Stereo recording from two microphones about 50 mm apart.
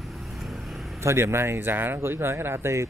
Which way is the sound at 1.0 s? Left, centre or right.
Right.